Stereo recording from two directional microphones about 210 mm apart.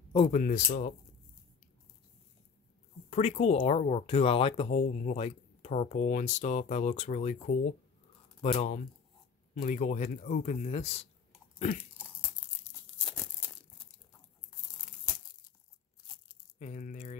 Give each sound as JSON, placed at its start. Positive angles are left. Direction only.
{"t": 0.1, "sound": "speech", "side_deg": 25}
{"t": 0.4, "sound": "speech", "side_deg": 35}
{"t": 3.1, "sound": "speech", "side_deg": 30}
{"t": 11.5, "sound": "crunch", "side_deg": 40}
{"t": 13.0, "sound": "tearing", "side_deg": 5}
{"t": 16.5, "sound": "a sound", "side_deg": 35}